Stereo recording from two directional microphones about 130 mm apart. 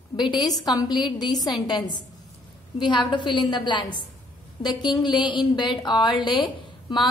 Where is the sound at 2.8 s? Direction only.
35° left (ahead or behind).